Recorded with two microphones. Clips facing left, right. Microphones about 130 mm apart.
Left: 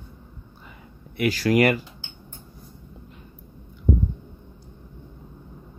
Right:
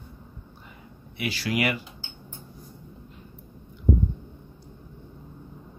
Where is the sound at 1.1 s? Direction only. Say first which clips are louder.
Left 8 dB; 45° left (ahead or behind).